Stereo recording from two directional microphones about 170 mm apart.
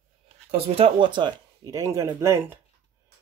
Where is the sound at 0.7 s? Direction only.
30° right (ahead or behind); by 2.6 s 15° right (ahead or behind).